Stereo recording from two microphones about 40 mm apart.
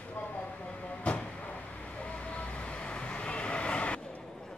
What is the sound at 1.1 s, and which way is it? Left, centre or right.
Vehicle, left.